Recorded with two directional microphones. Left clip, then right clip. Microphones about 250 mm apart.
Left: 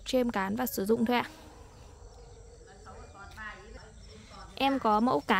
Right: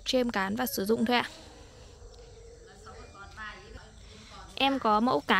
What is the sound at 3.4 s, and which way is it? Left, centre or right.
Snake, right.